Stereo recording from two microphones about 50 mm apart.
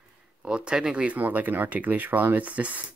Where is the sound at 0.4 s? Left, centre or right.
Centre.